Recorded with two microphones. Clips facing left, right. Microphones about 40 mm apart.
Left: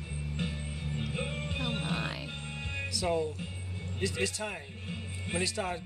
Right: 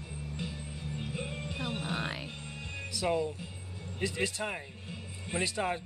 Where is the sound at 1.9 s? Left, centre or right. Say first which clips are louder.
Even; centre.